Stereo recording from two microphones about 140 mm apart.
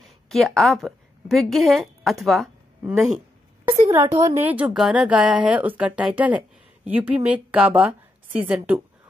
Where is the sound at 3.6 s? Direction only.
20° right (ahead or behind).